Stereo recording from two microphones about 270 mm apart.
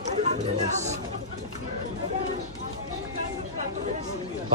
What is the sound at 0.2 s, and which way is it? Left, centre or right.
Speech, right.